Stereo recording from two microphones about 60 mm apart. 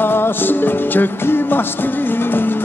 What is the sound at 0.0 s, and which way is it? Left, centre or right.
Music, left.